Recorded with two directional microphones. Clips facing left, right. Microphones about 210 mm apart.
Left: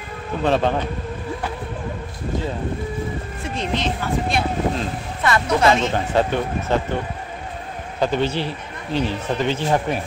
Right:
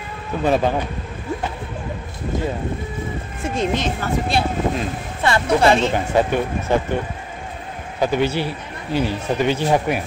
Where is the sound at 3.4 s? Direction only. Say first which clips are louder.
Right 3 dB; 45° right (ahead or behind).